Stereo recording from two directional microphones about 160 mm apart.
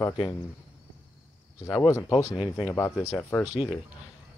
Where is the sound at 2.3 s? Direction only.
30° left (ahead or behind).